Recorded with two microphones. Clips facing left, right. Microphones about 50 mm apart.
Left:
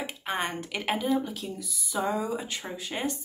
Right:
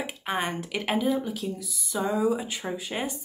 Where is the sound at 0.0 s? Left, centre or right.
Centre.